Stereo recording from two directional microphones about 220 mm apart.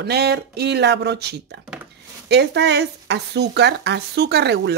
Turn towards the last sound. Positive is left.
turn(degrees=-50)  # may be behind; listen again after turning